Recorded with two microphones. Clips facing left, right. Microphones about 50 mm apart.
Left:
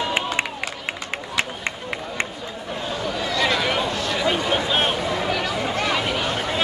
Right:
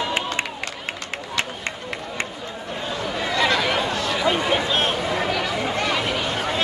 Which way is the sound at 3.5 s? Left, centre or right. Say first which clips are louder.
Right 1 dB; centre.